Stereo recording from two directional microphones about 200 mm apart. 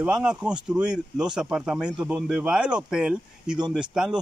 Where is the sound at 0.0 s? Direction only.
5° right (ahead or behind).